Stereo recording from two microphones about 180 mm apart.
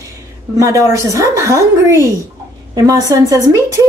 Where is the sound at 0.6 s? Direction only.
15° right (ahead or behind).